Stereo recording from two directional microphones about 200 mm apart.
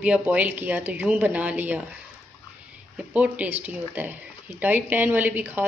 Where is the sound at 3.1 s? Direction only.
5° right (ahead or behind).